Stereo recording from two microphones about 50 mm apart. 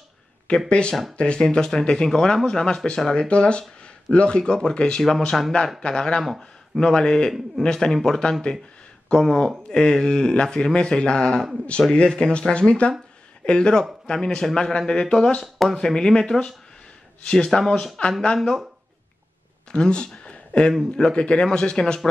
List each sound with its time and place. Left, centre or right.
0.7 s speech: left
5.0 s speech: centre
5.8 s speech: centre
6.2 s speech: centre
6.8 s speech: centre
19.7 s speech: centre